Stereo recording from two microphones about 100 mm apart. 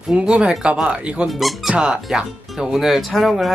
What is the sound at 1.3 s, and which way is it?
Speech, centre (ahead or behind).